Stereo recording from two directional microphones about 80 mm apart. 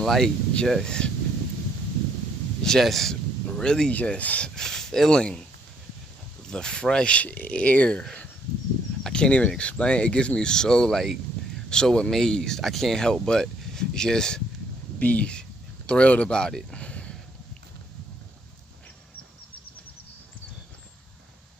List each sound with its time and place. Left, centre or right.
0.0 s speech: centre
2.6 s speech: centre
6.5 s speech: centre
9.0 s speech: centre